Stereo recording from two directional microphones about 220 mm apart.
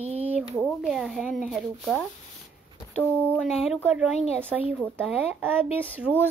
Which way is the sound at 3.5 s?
5° right (ahead or behind).